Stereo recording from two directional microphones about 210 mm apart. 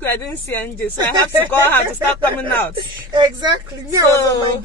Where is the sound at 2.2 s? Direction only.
10° left (ahead or behind).